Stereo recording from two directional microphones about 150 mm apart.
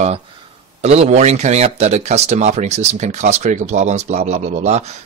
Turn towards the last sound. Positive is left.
turn(degrees=-45)  # may be behind; listen again after turning